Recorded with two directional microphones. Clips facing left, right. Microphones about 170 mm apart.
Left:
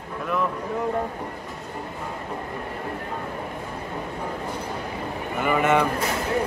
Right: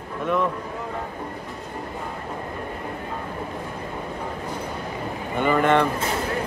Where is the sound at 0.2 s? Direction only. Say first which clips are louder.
Right 3 dB; centre (ahead or behind).